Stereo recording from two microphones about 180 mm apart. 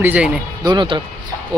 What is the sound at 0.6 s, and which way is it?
Speech, 25° right (ahead or behind).